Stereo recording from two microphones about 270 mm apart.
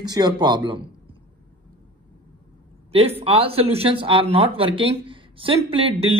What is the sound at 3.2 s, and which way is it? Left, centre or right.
Speech, right.